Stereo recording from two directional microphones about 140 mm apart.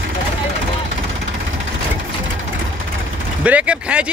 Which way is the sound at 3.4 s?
10° right (ahead or behind).